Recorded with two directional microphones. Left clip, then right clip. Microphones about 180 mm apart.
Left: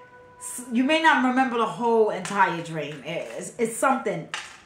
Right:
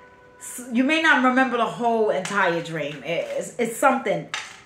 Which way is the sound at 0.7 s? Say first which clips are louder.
Right 1 dB; 15° left (ahead or behind).